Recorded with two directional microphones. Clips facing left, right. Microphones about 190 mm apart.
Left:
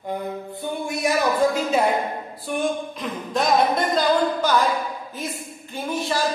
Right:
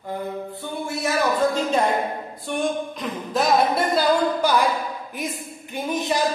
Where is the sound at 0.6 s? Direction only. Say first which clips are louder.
Left 5 dB; 15° left (ahead or behind).